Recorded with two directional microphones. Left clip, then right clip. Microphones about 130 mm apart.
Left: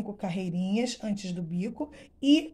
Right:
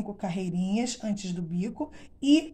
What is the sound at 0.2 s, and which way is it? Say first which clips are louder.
Speech: right 1 dB; 30° left (ahead or behind).